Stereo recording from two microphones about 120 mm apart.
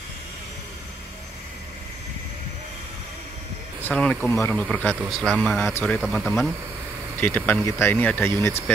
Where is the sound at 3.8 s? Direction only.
10° left (ahead or behind).